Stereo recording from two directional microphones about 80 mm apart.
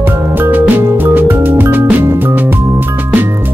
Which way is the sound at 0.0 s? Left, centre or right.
Right.